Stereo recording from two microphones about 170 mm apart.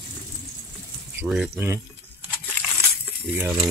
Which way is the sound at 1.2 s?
10° right (ahead or behind).